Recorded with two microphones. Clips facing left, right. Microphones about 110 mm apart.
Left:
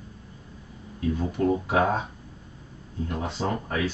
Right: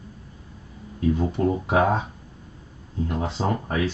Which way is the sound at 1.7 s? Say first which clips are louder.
Right 3 dB; 25° right (ahead or behind).